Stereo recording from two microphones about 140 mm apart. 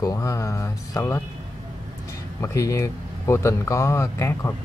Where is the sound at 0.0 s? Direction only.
25° left (ahead or behind).